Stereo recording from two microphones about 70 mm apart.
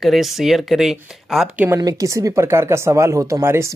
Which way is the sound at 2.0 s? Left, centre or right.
Right.